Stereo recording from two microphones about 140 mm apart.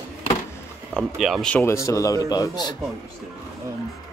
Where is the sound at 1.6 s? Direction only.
20° left (ahead or behind).